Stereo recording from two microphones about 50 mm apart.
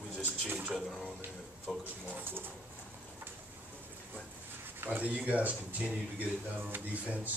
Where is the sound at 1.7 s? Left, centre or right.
Centre.